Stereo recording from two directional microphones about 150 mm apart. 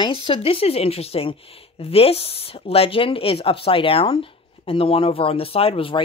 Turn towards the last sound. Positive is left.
turn(degrees=35)  # may be behind; listen again after turning